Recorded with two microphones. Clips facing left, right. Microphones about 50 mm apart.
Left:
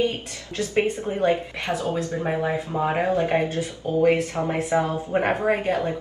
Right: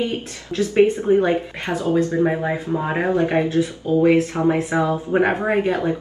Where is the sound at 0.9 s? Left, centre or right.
Right.